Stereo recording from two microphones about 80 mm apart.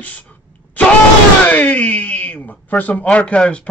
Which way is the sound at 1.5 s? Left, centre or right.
Left.